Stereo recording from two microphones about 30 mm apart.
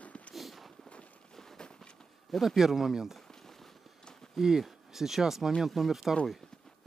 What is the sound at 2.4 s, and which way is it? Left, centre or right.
Speech, centre.